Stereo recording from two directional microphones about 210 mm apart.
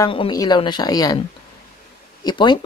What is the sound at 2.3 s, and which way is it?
Speech, 20° left (ahead or behind).